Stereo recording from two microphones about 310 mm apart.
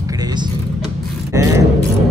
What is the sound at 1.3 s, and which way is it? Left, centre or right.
Speech, centre.